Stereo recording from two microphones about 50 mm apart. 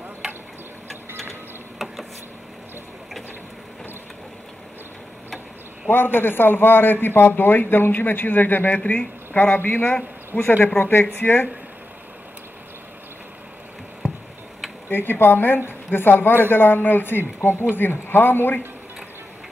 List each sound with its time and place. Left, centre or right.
1.8 s a sound: centre
5.9 s a man's voice: left
14.9 s a man's voice: left